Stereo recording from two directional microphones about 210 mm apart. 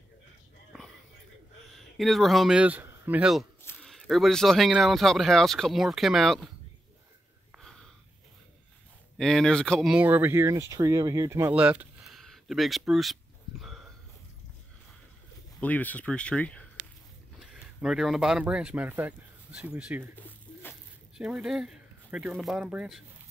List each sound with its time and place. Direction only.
0.7 s a sound: centre (ahead or behind)
1.8 s speech: centre (ahead or behind)
7.5 s wheeze: centre (ahead or behind)
9.2 s speech: centre (ahead or behind)
15.6 s speech: 5° left (ahead or behind); by 20.1 s 10° right (ahead or behind)
20.2 s pigeon: 10° left (ahead or behind)
21.2 s speech: 5° right (ahead or behind)